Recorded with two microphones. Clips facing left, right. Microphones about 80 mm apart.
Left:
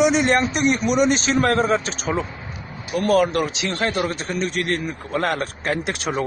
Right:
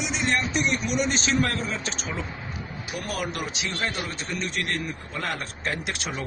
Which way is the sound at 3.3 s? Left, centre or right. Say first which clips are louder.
Left 8 dB; left.